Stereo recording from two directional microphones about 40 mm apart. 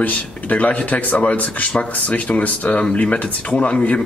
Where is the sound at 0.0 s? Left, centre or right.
Left.